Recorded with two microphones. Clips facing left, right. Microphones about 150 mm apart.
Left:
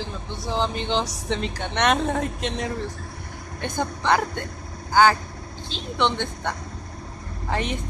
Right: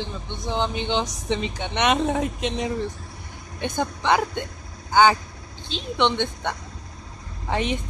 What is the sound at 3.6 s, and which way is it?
Speech, 15° right (ahead or behind).